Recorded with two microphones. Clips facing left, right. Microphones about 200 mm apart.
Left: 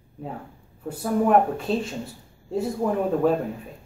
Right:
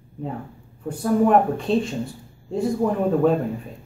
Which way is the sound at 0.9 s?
5° left (ahead or behind).